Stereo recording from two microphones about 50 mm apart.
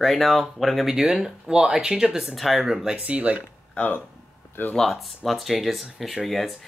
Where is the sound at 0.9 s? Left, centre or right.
Centre.